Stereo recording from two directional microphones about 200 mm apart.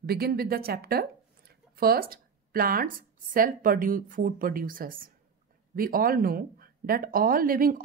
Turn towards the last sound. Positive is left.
turn(degrees=-45)  # may be behind; listen again after turning